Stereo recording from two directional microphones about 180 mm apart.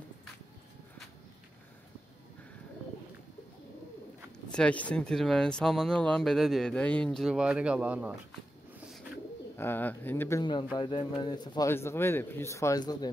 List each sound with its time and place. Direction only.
4.5 s speech: 5° left (ahead or behind)
9.6 s speech: 10° left (ahead or behind)
10.4 s speech: 25° left (ahead or behind)